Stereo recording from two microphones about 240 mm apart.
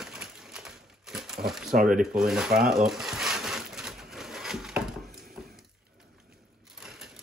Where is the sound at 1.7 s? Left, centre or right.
Right.